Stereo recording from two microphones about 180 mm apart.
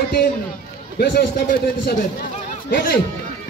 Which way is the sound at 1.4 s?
50° left (ahead or behind).